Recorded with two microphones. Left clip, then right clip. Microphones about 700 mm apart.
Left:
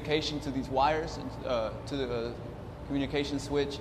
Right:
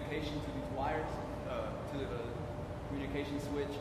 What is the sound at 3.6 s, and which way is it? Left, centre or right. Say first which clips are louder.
Speech: left 10 dB; left.